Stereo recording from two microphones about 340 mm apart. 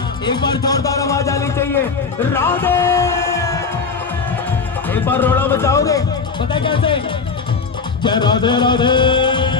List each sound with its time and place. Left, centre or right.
0.2 s speech: centre
2.3 s music: centre
4.9 s speech: centre
8.0 s music: centre